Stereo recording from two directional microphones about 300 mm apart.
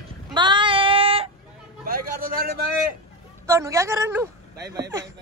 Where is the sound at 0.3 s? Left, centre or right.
Centre.